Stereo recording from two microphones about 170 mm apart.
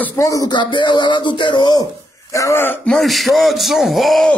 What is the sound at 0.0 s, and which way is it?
Speech, 15° left (ahead or behind).